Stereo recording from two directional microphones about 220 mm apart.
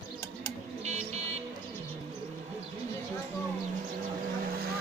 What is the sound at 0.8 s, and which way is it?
Music, 30° right (ahead or behind).